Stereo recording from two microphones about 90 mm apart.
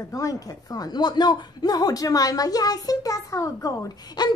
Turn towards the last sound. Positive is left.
turn(degrees=45)  # may be behind; listen again after turning